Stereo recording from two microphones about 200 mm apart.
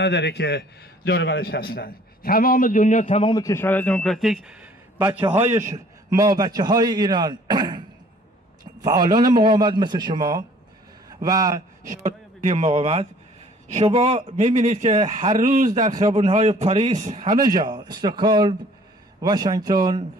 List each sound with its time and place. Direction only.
0.0 s a man's voice: 60° left (ahead or behind); by 7.8 s 20° right (ahead or behind)
8.8 s a man's voice: 20° right (ahead or behind)
11.8 s a man's voice: 40° right (ahead or behind)
17.5 s a man's voice: 20° right (ahead or behind)